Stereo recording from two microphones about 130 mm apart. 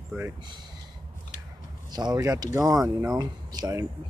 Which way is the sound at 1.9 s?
30° right (ahead or behind).